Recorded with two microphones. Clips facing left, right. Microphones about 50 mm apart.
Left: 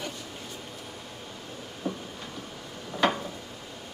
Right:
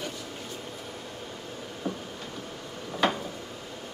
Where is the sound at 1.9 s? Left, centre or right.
Centre.